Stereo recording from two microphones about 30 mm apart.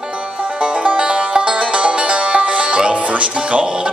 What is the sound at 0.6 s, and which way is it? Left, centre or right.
Music, right.